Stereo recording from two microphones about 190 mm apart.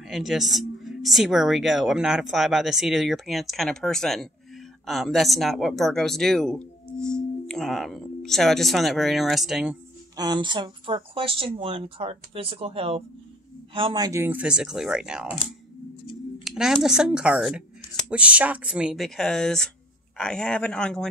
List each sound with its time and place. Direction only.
0.0 s speech: centre (ahead or behind)
10.1 s speech: 20° right (ahead or behind); by 15.2 s 5° right (ahead or behind)
16.4 s speech: centre (ahead or behind)